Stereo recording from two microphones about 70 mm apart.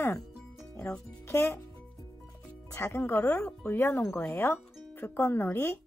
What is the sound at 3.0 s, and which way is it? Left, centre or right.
Speech, left.